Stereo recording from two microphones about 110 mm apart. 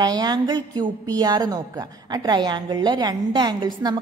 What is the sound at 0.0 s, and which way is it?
A woman's voice, 40° right (ahead or behind).